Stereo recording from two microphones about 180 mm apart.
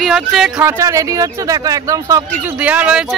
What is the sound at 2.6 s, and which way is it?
Speech, 5° right (ahead or behind).